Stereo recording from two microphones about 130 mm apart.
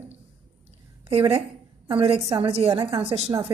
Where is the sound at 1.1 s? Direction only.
50° right (ahead or behind).